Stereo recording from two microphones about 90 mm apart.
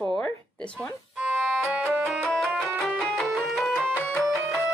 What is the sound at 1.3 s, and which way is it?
Music, centre (ahead or behind).